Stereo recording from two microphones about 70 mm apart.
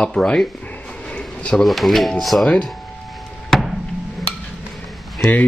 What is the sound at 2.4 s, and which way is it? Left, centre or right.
Speech, centre.